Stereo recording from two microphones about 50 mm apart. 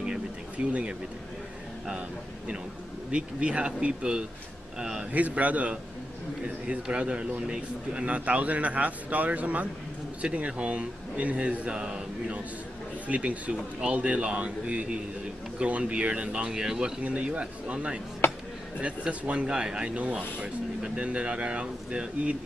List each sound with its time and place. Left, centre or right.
0.6 s a man's voice: centre
2.0 s a man's voice: right
5.1 s a man's voice: right; by 16.9 s centre
17.0 s a man's voice: right
18.2 s a sound: left
18.8 s a man's voice: right